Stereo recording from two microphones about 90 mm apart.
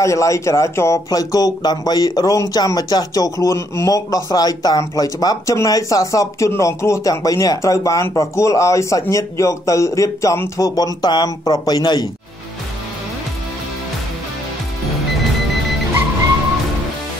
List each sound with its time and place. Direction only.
0.0 s speech: 35° left (ahead or behind)
10.8 s speech: 50° left (ahead or behind)